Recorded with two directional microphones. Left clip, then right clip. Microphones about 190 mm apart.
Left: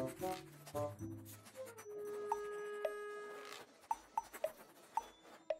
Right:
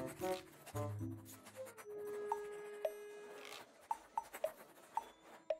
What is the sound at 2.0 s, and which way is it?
Music, centre (ahead or behind).